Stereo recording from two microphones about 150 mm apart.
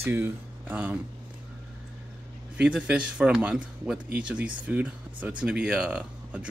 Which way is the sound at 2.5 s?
10° right (ahead or behind).